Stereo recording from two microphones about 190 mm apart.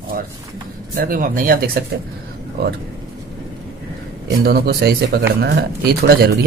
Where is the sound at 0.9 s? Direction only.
50° right (ahead or behind).